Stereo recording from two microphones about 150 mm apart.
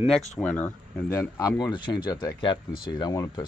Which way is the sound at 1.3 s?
25° left (ahead or behind).